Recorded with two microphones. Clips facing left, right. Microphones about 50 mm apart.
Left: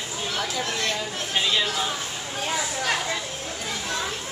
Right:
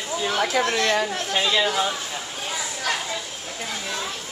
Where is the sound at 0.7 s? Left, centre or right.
Right.